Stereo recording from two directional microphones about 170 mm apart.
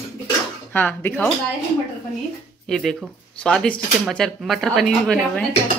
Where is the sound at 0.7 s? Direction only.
10° left (ahead or behind).